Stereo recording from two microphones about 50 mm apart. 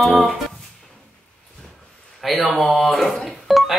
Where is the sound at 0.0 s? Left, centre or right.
Centre.